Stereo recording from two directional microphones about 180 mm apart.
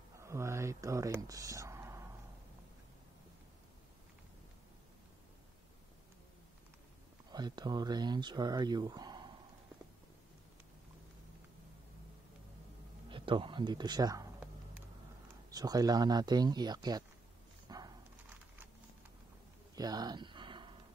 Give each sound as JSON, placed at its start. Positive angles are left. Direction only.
{"t": 0.2, "sound": "speech", "side_deg": -15}
{"t": 7.2, "sound": "speech", "side_deg": -25}
{"t": 13.1, "sound": "speech", "side_deg": -30}
{"t": 15.5, "sound": "speech", "side_deg": -20}
{"t": 17.6, "sound": "a sound", "side_deg": -20}
{"t": 19.7, "sound": "a sound", "side_deg": -20}